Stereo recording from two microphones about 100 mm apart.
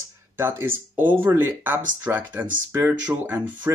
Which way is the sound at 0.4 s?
25° right (ahead or behind).